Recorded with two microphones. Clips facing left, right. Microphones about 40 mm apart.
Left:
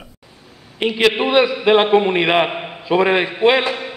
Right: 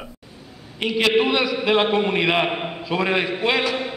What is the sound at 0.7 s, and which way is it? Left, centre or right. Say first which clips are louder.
A man's voice: left 2 dB; left.